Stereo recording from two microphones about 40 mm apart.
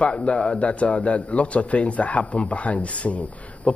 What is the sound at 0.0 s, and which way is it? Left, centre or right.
Speech, left.